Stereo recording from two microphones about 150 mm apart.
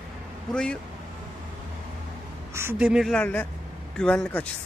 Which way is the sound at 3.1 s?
10° left (ahead or behind).